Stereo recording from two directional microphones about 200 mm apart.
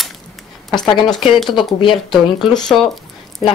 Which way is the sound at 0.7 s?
20° left (ahead or behind).